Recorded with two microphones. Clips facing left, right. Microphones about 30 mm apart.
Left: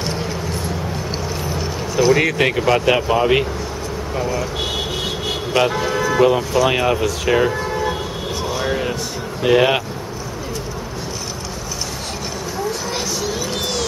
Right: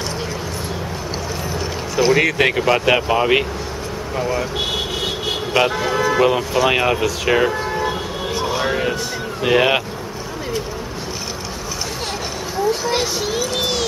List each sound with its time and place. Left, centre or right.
2.0 s speech: centre
4.6 s speech: centre
8.5 s a sound: centre
9.4 s speech: centre
12.9 s speech: right
13.6 s a sound: centre